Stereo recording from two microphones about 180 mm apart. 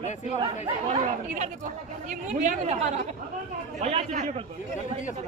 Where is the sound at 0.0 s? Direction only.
40° left (ahead or behind).